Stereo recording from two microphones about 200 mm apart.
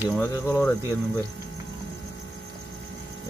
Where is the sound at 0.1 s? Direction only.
10° left (ahead or behind).